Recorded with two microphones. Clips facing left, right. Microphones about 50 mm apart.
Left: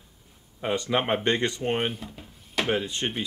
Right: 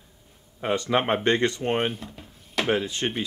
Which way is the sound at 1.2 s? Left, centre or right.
Right.